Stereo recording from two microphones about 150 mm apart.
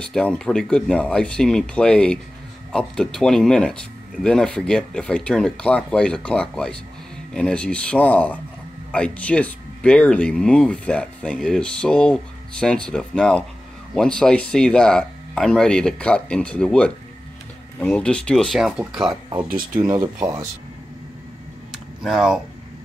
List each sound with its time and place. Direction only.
0.0 s speech: 5° left (ahead or behind)
19.8 s speech: 25° right (ahead or behind)
22.0 s speech: 5° right (ahead or behind)